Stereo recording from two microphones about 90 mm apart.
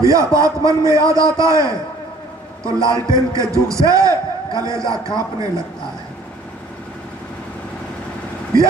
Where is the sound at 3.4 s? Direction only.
35° right (ahead or behind).